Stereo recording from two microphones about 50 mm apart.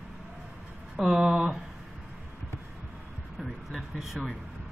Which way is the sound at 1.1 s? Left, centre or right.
Centre.